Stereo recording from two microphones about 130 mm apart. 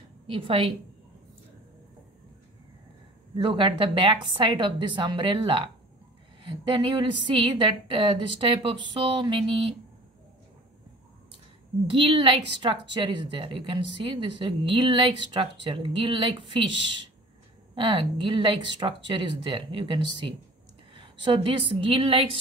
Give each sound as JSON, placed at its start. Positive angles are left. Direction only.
{"t": 0.3, "sound": "a woman's voice", "side_deg": -45}
{"t": 3.3, "sound": "a woman's voice", "side_deg": -40}
{"t": 11.9, "sound": "a woman's voice", "side_deg": -45}
{"t": 17.7, "sound": "a woman's voice", "side_deg": -40}